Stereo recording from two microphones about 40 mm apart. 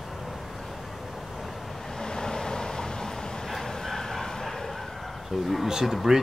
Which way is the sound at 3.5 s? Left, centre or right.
Centre.